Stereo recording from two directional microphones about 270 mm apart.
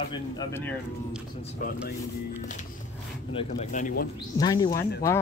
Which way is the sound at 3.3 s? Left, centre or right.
Left.